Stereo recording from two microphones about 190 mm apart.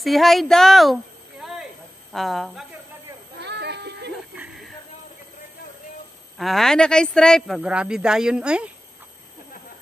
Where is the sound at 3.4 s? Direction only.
60° right (ahead or behind).